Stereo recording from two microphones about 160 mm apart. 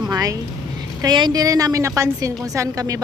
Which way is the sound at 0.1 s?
20° right (ahead or behind).